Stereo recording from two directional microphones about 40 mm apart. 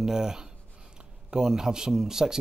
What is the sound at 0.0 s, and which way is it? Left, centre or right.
Speech, centre.